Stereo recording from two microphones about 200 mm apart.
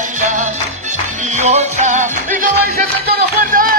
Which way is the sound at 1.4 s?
35° right (ahead or behind).